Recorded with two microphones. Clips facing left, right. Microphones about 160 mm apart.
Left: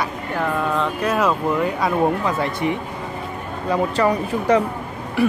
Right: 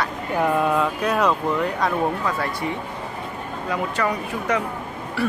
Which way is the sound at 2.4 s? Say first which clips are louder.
Left 4 dB; 20° left (ahead or behind).